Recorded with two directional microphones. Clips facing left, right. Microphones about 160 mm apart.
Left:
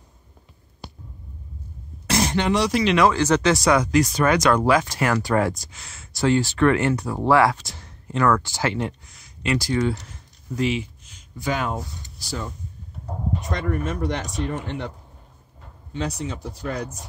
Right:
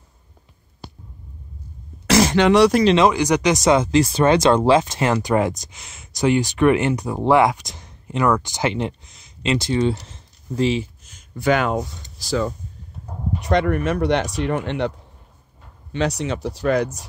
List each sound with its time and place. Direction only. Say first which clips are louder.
2.0 s throat clearing: right 6 dB; 90° right
3.1 s speech: right 1 dB; 15° right (ahead or behind); by 10.9 s 30° right (ahead or behind)
11.1 s speech: right 7 dB; 65° right (ahead or behind); by 12.5 s 90° right
13.4 s speech: right 10 dB; 70° right (ahead or behind)
15.9 s speech: right 6 dB; 80° right